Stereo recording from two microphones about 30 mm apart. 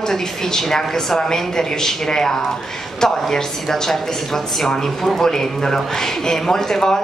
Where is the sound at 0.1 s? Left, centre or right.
Centre.